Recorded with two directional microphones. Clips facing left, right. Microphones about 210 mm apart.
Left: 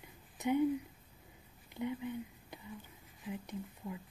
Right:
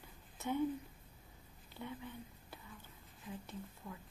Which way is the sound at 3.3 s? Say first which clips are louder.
Left 5 dB; 15° left (ahead or behind).